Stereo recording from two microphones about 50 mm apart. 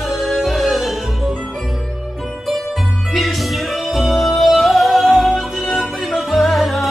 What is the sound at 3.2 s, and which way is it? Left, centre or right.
Music, centre.